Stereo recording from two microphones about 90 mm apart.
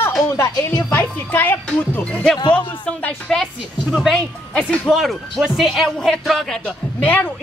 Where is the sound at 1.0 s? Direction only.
20° left (ahead or behind); by 6.1 s centre (ahead or behind).